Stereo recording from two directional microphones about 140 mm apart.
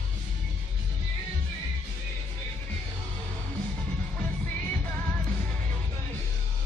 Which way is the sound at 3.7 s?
10° left (ahead or behind).